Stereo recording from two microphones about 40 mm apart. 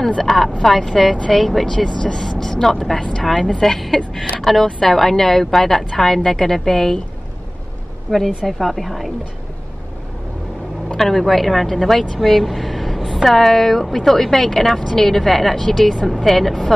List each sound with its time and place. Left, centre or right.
0.2 s a woman's voice: centre
1.9 s a woman's voice: centre
8.1 s speech: centre
11.0 s speech: centre